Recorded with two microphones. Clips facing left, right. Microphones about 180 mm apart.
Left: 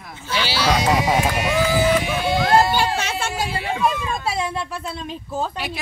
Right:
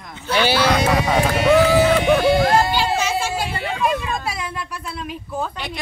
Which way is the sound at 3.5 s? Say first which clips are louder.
Even; 30° left (ahead or behind).